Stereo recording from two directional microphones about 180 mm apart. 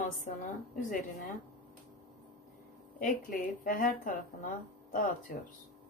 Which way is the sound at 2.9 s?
50° left (ahead or behind).